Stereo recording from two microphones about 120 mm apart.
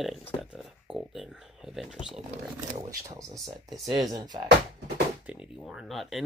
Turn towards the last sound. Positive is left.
turn(degrees=0)  # may be behind; listen again after turning